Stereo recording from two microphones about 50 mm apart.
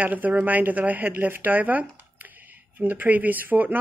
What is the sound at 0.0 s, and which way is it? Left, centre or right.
Speech, right.